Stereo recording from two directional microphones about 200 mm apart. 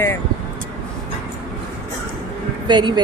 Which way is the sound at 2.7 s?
20° right (ahead or behind).